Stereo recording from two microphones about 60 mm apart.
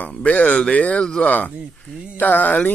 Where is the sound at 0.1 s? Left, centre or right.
Left.